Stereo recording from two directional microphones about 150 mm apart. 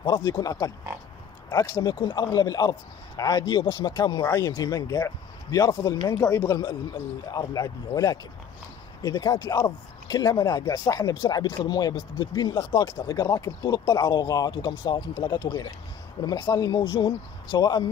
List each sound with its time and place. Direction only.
0.0 s a man's voice: 25° left (ahead or behind)